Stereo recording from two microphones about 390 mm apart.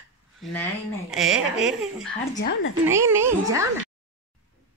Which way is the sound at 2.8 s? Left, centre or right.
Centre.